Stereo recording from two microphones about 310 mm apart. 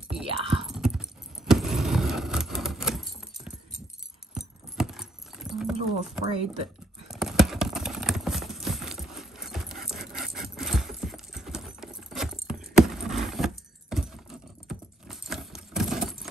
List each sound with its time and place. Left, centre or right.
0.2 s whispering: centre
0.7 s keys jangling: centre
6.2 s speech: centre
7.1 s clip-clop: centre
14.7 s keys jangling: centre